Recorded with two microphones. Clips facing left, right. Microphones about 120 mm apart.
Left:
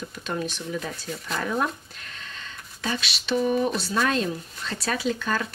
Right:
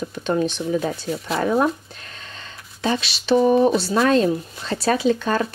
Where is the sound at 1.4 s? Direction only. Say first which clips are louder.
Right 8 dB; 30° right (ahead or behind).